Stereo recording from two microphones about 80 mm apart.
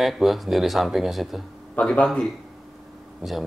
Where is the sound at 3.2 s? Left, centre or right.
Centre.